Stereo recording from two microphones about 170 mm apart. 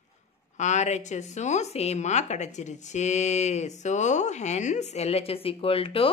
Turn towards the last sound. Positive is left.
turn(degrees=35)  # may be behind; listen again after turning